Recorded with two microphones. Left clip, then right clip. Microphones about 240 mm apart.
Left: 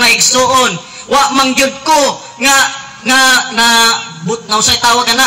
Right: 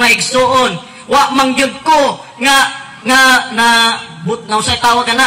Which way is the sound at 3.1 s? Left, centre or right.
Left.